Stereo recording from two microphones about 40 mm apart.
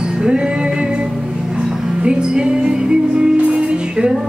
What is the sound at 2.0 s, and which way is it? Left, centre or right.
Music, right.